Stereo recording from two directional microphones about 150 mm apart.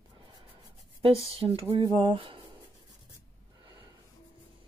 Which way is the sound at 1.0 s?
40° right (ahead or behind).